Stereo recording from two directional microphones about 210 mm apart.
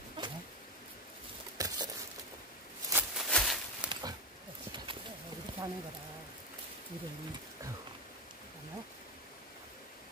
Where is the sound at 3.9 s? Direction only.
25° right (ahead or behind).